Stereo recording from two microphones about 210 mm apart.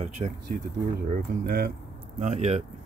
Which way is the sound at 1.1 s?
45° right (ahead or behind).